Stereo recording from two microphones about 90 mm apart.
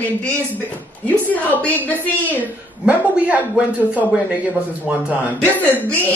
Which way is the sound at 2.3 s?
15° right (ahead or behind).